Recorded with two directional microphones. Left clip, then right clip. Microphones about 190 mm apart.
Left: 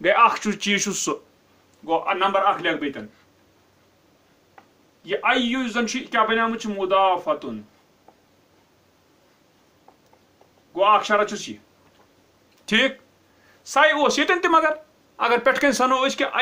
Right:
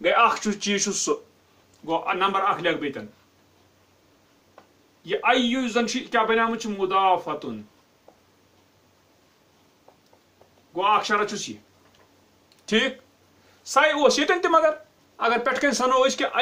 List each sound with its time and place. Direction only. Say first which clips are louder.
0.0 s speech: left 2 dB; 25° left (ahead or behind)
1.9 s a man's voice: left 2 dB; 15° left (ahead or behind)
5.0 s a man's voice: even; 10° left (ahead or behind)
10.7 s a man's voice: left 4 dB; 15° left (ahead or behind)
12.6 s speech: left 3 dB; 40° left (ahead or behind)